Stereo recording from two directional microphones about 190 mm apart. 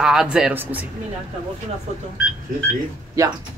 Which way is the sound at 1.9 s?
35° right (ahead or behind).